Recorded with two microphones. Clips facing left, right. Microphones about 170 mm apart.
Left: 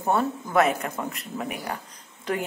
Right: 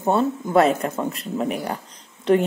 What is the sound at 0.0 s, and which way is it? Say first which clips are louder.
A woman's voice: right 4 dB; 25° right (ahead or behind).